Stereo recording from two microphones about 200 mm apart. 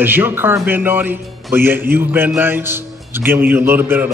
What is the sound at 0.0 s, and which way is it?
A man's voice, 10° right (ahead or behind).